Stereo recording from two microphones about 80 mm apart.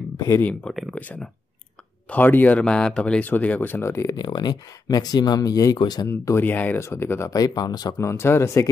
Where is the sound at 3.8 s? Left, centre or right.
Left.